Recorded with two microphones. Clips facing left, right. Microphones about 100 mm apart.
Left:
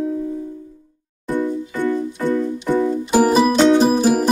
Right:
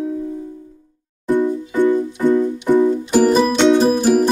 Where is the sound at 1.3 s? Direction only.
15° right (ahead or behind).